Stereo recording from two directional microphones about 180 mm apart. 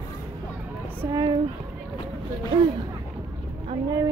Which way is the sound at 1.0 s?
20° right (ahead or behind).